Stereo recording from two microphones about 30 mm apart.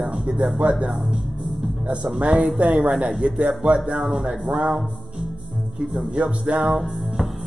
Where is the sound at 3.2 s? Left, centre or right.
Right.